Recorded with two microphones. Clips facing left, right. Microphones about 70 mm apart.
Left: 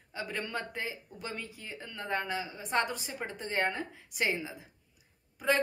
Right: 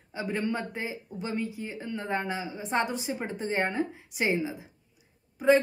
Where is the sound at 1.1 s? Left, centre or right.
Right.